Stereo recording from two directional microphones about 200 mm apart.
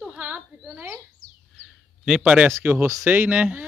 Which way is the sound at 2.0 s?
5° right (ahead or behind).